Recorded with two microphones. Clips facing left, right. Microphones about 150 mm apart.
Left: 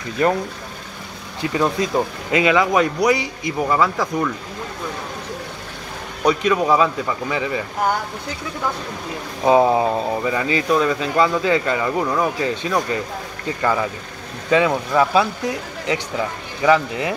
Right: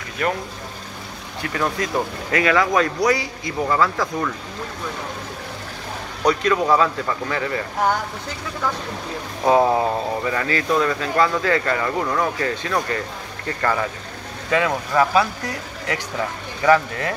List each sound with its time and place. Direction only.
0.2 s speech: 30° left (ahead or behind)
1.4 s speech: 20° left (ahead or behind)
6.2 s speech: 15° left (ahead or behind)
9.4 s speech: 15° left (ahead or behind)
16.6 s speech: 15° left (ahead or behind)